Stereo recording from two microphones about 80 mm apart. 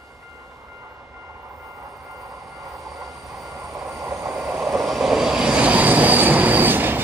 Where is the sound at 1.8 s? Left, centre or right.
Centre.